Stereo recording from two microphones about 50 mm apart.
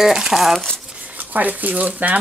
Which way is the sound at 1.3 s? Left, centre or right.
Right.